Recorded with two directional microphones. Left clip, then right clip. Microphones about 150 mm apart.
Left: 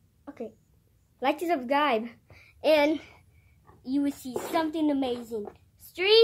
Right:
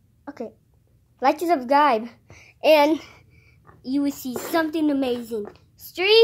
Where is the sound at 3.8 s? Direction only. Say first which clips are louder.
Right 4 dB; centre (ahead or behind).